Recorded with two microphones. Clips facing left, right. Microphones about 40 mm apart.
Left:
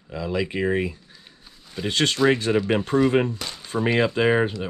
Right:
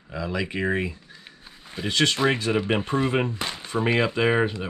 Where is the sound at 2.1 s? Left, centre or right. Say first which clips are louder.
Left 3 dB; right.